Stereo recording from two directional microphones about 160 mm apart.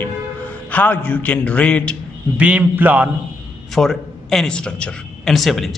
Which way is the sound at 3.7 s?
Centre (ahead or behind).